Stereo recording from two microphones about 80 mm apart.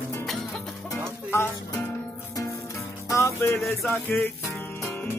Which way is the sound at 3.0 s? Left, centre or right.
Left.